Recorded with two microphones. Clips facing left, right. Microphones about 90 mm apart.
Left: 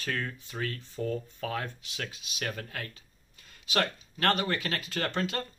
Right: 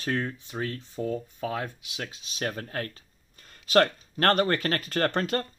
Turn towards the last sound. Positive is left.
turn(degrees=-45)  # may be behind; listen again after turning